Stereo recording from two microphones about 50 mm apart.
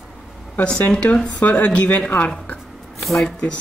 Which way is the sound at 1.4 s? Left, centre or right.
Left.